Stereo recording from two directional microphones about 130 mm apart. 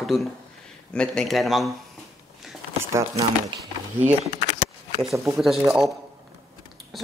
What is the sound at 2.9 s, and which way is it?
Speech, 20° right (ahead or behind).